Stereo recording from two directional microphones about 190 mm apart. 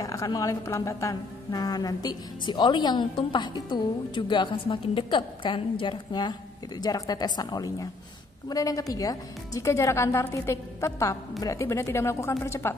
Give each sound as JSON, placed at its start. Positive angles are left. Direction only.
{"t": 0.0, "sound": "a woman's voice", "side_deg": 15}